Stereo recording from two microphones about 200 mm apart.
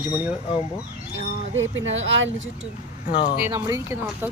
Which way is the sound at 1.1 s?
70° right (ahead or behind).